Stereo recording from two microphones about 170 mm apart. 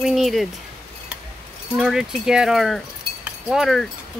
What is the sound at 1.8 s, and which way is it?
Speech, 5° right (ahead or behind).